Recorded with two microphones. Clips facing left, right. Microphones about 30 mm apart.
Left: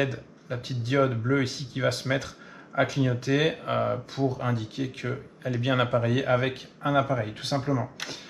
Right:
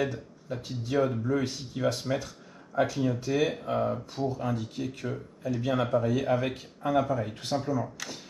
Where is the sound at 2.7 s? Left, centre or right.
Left.